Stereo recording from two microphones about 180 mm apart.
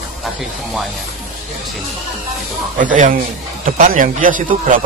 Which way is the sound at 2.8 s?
45° right (ahead or behind).